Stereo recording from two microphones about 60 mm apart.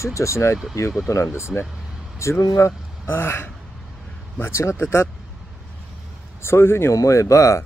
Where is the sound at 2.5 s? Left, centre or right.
Left.